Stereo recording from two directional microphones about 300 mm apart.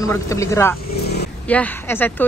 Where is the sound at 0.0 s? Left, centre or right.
Centre.